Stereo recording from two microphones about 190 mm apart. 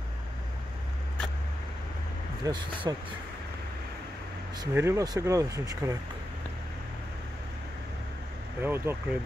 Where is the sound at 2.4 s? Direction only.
25° right (ahead or behind).